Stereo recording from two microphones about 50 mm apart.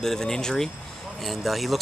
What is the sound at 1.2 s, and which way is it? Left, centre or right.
Speech, centre.